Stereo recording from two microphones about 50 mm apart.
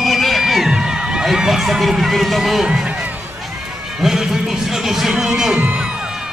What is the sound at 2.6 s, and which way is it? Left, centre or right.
Speech, centre.